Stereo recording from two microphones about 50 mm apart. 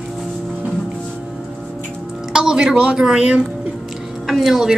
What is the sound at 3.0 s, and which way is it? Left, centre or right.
Speech, centre.